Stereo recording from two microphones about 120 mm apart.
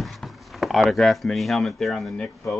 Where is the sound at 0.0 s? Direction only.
Centre (ahead or behind).